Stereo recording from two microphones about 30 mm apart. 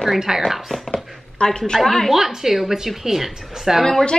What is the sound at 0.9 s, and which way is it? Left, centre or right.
Speech, left.